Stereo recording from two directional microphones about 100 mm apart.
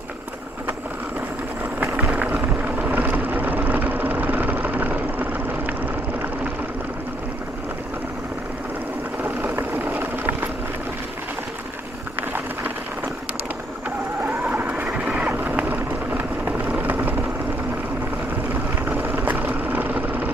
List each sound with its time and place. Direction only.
1.6 s vehicle: 15° right (ahead or behind)
9.2 s vehicle: 20° right (ahead or behind)
12.2 s a sound: 20° right (ahead or behind)
14.2 s vehicle: 20° right (ahead or behind)
18.5 s vehicle: 20° right (ahead or behind)